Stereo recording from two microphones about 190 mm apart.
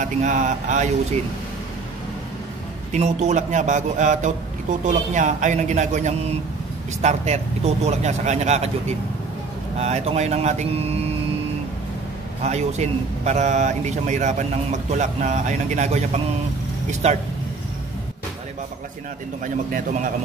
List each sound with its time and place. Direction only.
0.0 s a man's voice: 40° right (ahead or behind)
2.9 s a man's voice: 35° right (ahead or behind)
12.4 s a man's voice: 35° right (ahead or behind)
19.4 s a man's voice: 45° right (ahead or behind)